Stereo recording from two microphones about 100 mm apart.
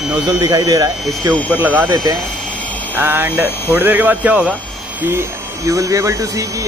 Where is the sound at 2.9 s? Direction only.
20° right (ahead or behind).